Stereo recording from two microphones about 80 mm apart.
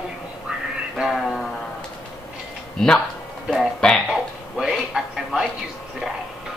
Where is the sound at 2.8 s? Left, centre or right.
Centre.